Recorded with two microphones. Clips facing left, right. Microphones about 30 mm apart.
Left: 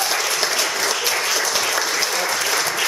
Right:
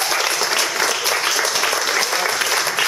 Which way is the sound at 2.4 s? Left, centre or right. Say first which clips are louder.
Right 2 dB; centre.